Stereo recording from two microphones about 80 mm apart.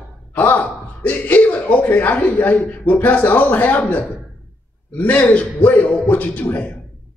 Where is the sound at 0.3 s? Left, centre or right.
Left.